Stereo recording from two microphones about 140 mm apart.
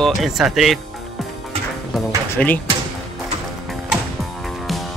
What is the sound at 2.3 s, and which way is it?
Speech, 10° left (ahead or behind).